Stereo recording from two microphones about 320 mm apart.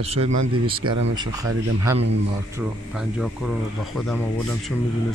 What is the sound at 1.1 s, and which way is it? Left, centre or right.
Speech, centre.